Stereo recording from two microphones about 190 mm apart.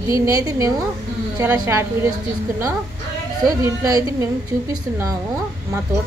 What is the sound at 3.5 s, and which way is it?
A woman's voice, 20° right (ahead or behind).